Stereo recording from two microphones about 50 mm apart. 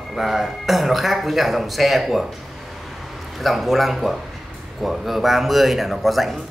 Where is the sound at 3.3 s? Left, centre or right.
Centre.